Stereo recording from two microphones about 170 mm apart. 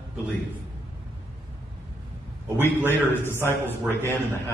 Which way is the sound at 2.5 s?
15° left (ahead or behind).